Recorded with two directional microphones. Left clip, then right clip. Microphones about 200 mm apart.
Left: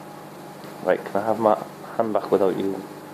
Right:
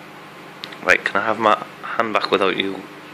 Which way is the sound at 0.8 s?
25° right (ahead or behind).